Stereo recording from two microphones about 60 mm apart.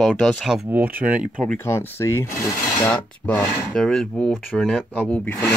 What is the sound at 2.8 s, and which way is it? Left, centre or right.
Rub, left.